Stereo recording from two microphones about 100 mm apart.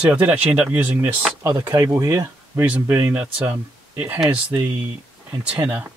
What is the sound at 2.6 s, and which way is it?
Speech, 20° right (ahead or behind).